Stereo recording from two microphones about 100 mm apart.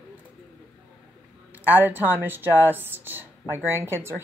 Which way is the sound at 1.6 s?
20° right (ahead or behind).